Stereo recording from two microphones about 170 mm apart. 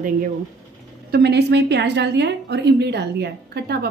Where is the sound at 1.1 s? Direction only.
75° right (ahead or behind).